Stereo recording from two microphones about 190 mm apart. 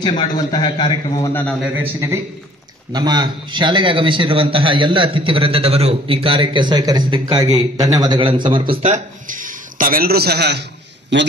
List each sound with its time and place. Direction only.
0.2 s a man's voice: 25° left (ahead or behind)
1.6 s a man's voice: 10° right (ahead or behind)
2.9 s a man's voice: 20° right (ahead or behind)
8.8 s a man's voice: 40° right (ahead or behind); by 10.6 s 60° right (ahead or behind)